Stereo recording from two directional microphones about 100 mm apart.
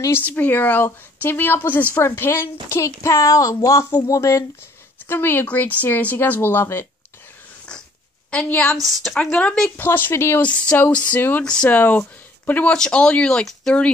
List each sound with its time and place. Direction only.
0.3 s speech: 15° left (ahead or behind); by 4.5 s 35° left (ahead or behind)
5.0 s speech: 20° left (ahead or behind)
8.3 s speech: 15° left (ahead or behind)
8.7 s a woman's voice: centre (ahead or behind)
9.2 s speech: 10° left (ahead or behind)
10.4 s speech: 10° left (ahead or behind)
11.4 s speech: 10° left (ahead or behind)